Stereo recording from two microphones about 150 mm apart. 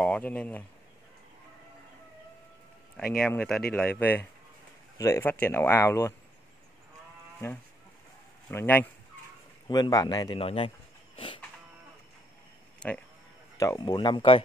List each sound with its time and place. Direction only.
0.0 s speech: 10° left (ahead or behind)
3.2 s speech: 5° left (ahead or behind)
8.5 s speech: 10° left (ahead or behind)
9.7 s speech: 25° left (ahead or behind)
10.3 s speech: 40° left (ahead or behind)
11.1 s livestock: 35° left (ahead or behind)
12.8 s speech: 5° left (ahead or behind)
13.6 s speech: 25° left (ahead or behind)